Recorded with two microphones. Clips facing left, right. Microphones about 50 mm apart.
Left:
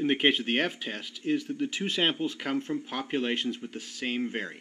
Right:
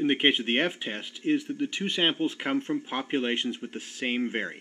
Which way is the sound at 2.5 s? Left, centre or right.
Centre.